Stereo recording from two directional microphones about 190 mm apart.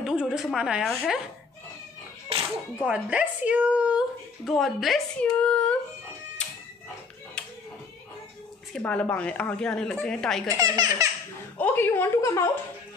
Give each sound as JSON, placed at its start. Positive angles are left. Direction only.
{"t": 0.0, "sound": "speech", "side_deg": -5}
{"t": 2.3, "sound": "music", "side_deg": -30}
{"t": 2.9, "sound": "speech", "side_deg": -5}
{"t": 7.4, "sound": "a sound", "side_deg": 5}
{"t": 8.7, "sound": "speech", "side_deg": 5}
{"t": 10.6, "sound": "speech", "side_deg": -20}
{"t": 11.5, "sound": "a woman's voice", "side_deg": 10}